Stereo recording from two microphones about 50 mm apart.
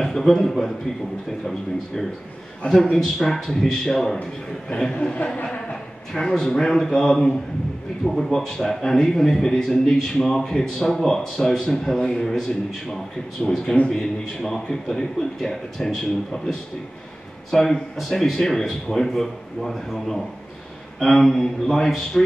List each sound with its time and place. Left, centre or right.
0.0 s a man's voice: centre
2.7 s a man's voice: centre
4.9 s speech: left
6.1 s a man's voice: centre